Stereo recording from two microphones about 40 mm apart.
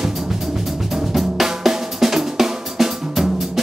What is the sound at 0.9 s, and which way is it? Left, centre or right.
Drum, centre.